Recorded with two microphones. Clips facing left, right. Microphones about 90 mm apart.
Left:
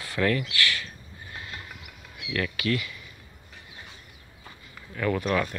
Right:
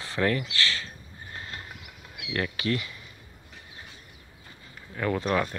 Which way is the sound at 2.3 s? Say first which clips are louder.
Left 1 dB; 30° right (ahead or behind).